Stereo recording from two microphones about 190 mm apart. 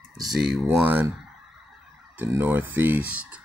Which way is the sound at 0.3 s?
5° right (ahead or behind).